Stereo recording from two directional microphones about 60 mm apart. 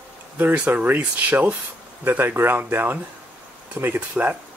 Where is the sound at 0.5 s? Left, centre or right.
Right.